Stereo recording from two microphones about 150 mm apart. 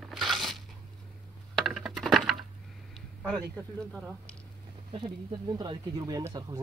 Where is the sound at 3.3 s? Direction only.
10° left (ahead or behind).